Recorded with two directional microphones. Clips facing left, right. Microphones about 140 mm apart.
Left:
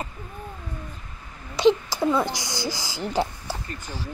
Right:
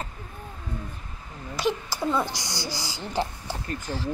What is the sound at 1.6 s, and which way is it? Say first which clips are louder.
Speech: left 8 dB; 20° left (ahead or behind).